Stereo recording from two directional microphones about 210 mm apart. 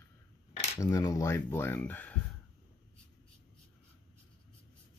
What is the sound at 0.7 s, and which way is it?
Speech, 15° left (ahead or behind).